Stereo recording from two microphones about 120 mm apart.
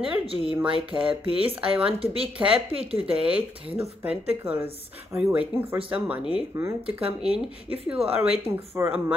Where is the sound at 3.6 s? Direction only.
55° right (ahead or behind).